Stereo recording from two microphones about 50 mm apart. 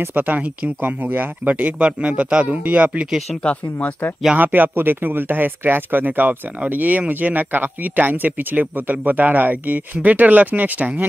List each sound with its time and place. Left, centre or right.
0.1 s speech: right
2.4 s speech: right
4.4 s speech: right